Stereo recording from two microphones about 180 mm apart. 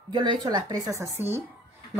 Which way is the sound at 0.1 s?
25° right (ahead or behind).